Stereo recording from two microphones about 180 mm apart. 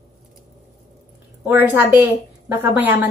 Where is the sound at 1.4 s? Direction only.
10° right (ahead or behind).